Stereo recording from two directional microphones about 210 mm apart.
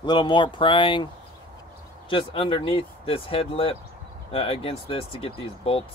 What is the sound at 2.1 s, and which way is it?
Speech, 25° left (ahead or behind).